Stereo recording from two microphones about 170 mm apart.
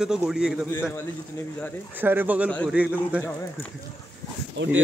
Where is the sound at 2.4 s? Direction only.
5° left (ahead or behind).